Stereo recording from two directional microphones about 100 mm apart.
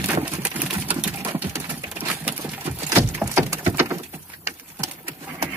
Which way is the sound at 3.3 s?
30° right (ahead or behind).